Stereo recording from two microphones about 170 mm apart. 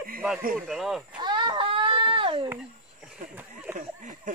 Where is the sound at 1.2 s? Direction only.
25° right (ahead or behind).